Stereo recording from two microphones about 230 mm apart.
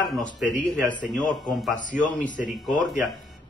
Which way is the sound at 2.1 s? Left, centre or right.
Left.